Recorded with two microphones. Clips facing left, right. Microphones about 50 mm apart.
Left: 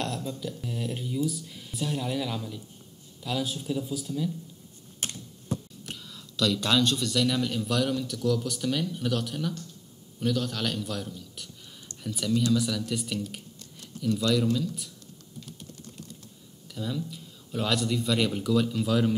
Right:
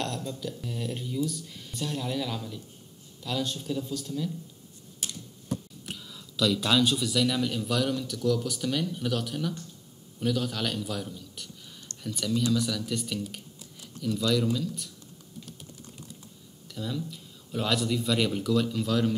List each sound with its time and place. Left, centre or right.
0.0 s speech: centre
5.0 s computer keyboard: left
5.5 s speech: centre
16.7 s speech: centre